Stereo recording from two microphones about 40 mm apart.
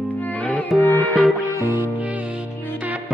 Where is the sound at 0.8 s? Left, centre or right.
Left.